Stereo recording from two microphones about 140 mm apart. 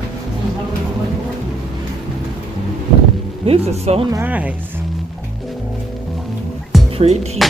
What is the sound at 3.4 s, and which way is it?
Speech, 45° right (ahead or behind).